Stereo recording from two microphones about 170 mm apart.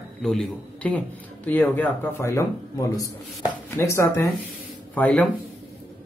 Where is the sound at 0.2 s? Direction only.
5° left (ahead or behind).